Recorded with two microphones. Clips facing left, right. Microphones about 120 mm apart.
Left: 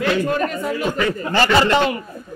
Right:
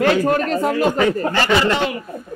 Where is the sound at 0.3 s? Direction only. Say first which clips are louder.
Right 3 dB; 80° right.